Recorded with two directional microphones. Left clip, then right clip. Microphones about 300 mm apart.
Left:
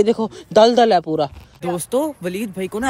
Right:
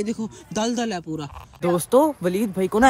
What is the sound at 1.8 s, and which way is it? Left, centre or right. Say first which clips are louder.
Speech: right 4 dB; centre.